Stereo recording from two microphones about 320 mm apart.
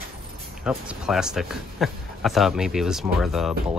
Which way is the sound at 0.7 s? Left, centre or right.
Centre.